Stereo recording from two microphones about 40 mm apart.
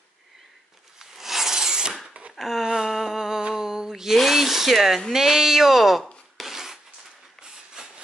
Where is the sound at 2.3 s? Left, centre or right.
Centre.